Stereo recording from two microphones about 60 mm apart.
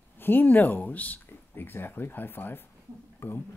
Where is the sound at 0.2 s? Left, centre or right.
Left.